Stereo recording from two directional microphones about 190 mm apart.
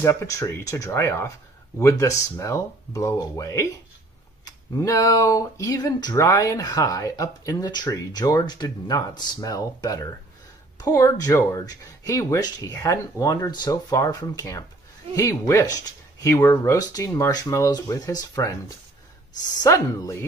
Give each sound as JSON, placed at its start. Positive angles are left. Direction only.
{"t": 0.0, "sound": "speech", "side_deg": 15}
{"t": 4.7, "sound": "speech", "side_deg": 15}
{"t": 19.6, "sound": "speech", "side_deg": 15}